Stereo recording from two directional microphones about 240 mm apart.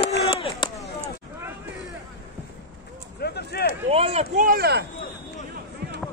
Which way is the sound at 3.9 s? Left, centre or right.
Right.